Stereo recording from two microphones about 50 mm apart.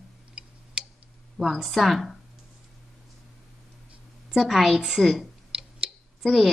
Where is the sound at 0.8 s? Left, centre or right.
Centre.